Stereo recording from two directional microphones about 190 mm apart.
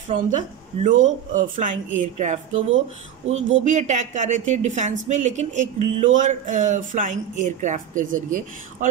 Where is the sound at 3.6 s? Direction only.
40° right (ahead or behind).